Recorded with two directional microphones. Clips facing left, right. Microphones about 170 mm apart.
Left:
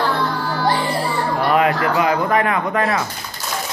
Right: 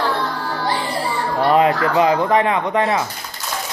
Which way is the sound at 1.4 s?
30° right (ahead or behind).